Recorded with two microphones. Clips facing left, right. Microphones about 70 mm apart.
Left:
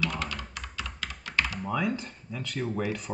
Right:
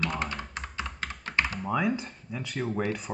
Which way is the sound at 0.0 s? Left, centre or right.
Right.